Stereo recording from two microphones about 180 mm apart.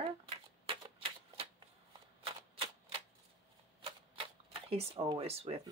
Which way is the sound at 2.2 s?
30° right (ahead or behind).